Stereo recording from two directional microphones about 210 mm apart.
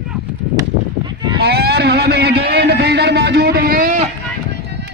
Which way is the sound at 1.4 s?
50° right (ahead or behind).